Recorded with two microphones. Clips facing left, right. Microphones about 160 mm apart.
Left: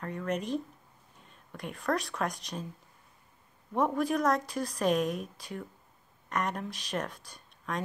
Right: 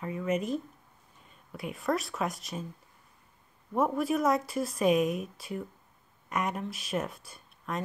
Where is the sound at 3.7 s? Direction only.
5° right (ahead or behind).